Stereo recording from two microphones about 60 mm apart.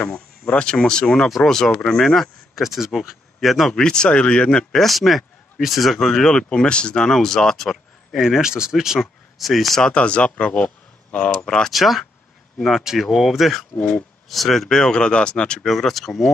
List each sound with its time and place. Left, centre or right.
0.0 s speech: centre
3.7 s speech: centre
4.7 s speech: centre
11.7 s speech: centre
15.7 s speech: centre